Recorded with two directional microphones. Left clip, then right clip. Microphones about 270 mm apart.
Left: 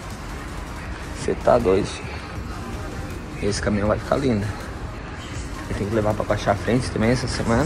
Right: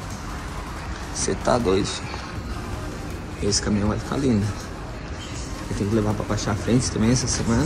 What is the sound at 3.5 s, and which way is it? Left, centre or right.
Speech, centre.